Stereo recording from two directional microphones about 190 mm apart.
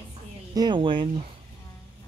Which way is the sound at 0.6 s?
25° right (ahead or behind).